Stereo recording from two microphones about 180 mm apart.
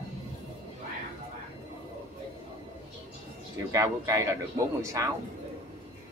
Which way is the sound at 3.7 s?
20° right (ahead or behind).